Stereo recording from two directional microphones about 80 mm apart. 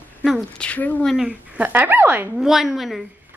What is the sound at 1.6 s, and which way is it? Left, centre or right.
Speech, right.